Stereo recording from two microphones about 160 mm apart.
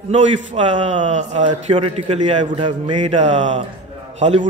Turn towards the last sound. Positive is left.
turn(degrees=-45)  # may be behind; listen again after turning